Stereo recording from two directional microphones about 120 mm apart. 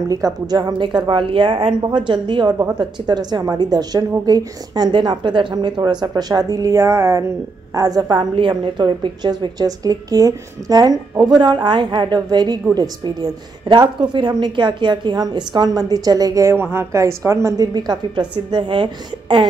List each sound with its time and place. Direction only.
0.1 s a woman's voice: 30° right (ahead or behind); by 1.8 s 50° right (ahead or behind)
1.8 s a woman's voice: 40° right (ahead or behind)